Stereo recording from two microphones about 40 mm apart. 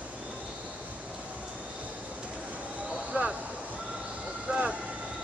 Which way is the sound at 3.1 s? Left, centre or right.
Right.